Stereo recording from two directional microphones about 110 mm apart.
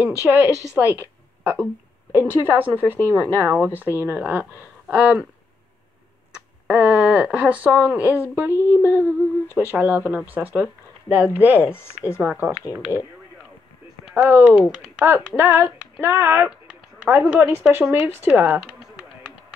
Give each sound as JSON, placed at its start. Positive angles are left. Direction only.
{"t": 0.0, "sound": "a woman's voice", "side_deg": -15}
{"t": 6.3, "sound": "speech", "side_deg": -10}
{"t": 11.7, "sound": "speech", "side_deg": 25}
{"t": 12.2, "sound": "speech", "side_deg": -15}
{"t": 14.1, "sound": "speech", "side_deg": -15}
{"t": 15.0, "sound": "speech", "side_deg": -20}